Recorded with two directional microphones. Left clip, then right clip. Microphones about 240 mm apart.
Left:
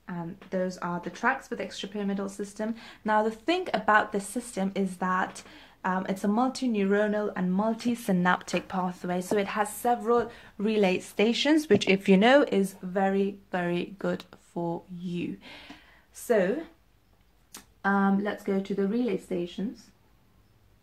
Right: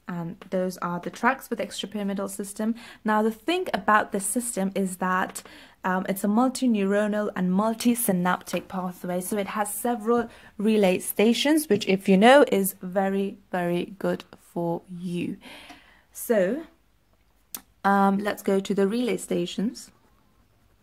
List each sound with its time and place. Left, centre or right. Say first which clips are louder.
0.0 s a woman's voice: right 3 dB; right
17.5 s a sound: right 5 dB; right
17.9 s speech: right 5 dB; right